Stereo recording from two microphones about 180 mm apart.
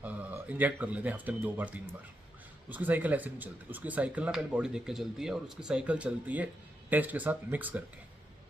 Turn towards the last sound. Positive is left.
turn(degrees=-10)  # may be behind; listen again after turning